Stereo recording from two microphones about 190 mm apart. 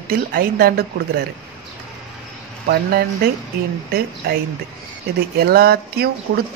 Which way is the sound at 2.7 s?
55° right (ahead or behind).